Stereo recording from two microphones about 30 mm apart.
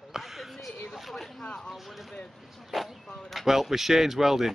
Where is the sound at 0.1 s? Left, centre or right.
Centre.